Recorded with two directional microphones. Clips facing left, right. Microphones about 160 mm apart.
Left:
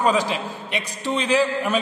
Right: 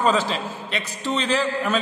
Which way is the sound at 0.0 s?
10° left (ahead or behind).